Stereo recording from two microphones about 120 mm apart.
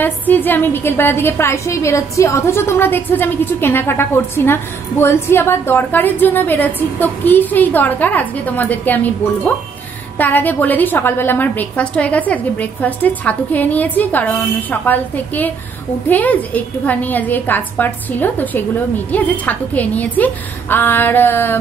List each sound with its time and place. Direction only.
0.0 s a woman's voice: 15° left (ahead or behind)